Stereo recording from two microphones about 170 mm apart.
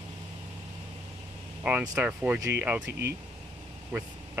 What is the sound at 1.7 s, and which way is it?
Speech, 10° right (ahead or behind).